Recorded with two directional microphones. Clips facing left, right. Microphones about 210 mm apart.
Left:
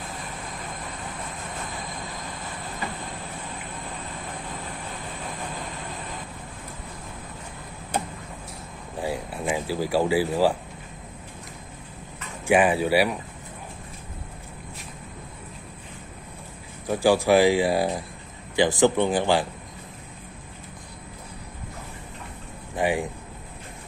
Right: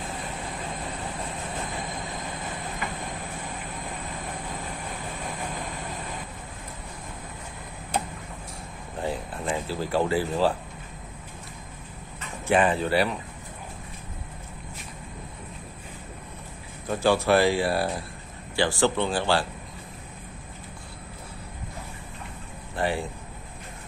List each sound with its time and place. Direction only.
8.9 s a sound: 10° left (ahead or behind)
12.4 s speech: 10° left (ahead or behind)
16.8 s speech: 10° left (ahead or behind)
22.8 s speech: 15° left (ahead or behind)